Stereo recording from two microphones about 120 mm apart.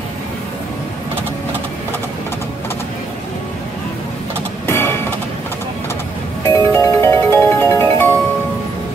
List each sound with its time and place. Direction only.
4.6 s music: 20° left (ahead or behind)
6.5 s music: 20° left (ahead or behind)